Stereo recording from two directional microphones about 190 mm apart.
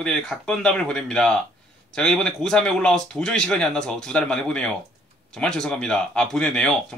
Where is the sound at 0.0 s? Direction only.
5° left (ahead or behind).